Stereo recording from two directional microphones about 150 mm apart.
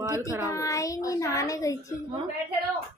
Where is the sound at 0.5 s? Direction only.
20° left (ahead or behind).